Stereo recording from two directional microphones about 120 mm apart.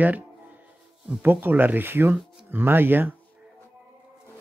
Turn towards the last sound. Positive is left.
turn(degrees=-15)  # may be behind; listen again after turning